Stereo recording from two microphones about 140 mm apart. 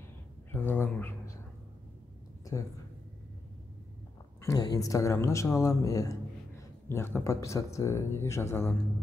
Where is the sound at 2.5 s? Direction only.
20° left (ahead or behind).